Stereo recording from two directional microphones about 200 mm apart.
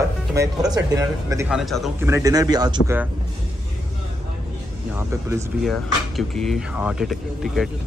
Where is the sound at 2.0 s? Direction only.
15° right (ahead or behind).